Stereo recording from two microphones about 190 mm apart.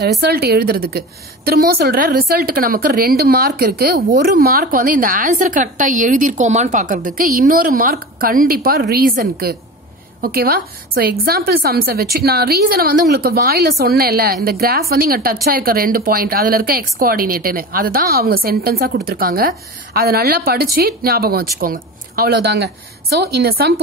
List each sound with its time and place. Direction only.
0.0 s a woman's voice: 55° right (ahead or behind)